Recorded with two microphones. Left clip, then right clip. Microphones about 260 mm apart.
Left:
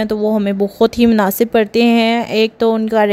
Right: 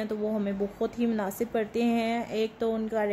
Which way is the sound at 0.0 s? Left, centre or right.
Left.